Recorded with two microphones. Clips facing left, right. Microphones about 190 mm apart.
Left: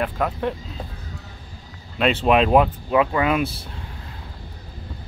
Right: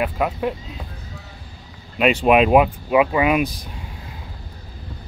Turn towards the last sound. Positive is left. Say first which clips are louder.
# right 2 dB
turn(degrees=-15)  # may be behind; listen again after turning